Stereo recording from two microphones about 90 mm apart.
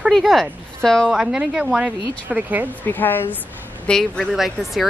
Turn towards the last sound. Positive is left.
turn(degrees=0)  # may be behind; listen again after turning